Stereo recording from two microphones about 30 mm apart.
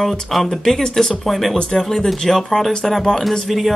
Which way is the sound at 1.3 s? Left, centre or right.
Centre.